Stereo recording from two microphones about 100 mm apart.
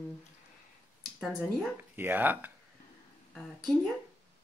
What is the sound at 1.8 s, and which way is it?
Speech, 20° right (ahead or behind).